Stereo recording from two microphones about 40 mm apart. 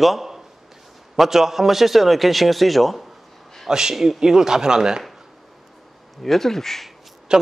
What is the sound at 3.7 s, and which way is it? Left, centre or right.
A man's voice, centre.